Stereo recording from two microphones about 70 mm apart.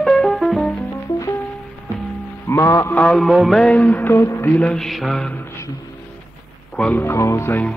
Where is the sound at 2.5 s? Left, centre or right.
Left.